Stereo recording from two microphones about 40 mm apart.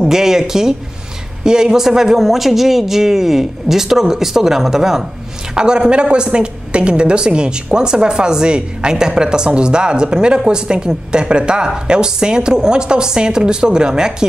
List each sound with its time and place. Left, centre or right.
0.0 s a man's voice: centre